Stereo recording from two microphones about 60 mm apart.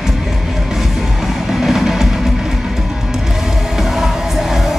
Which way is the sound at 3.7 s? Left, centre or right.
Centre.